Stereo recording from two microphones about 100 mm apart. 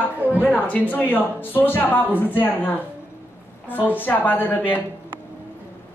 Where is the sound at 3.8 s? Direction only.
20° left (ahead or behind).